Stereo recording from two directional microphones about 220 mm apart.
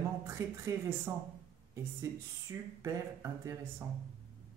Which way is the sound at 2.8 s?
15° right (ahead or behind).